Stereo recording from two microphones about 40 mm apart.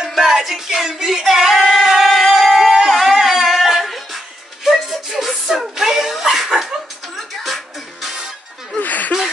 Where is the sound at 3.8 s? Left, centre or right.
Centre.